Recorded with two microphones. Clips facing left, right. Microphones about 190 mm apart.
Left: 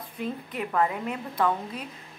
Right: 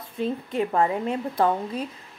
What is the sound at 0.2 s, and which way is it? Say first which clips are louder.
A woman's voice: right 6 dB; 30° right (ahead or behind).